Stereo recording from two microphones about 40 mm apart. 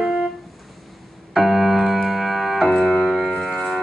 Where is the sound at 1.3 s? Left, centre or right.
Centre.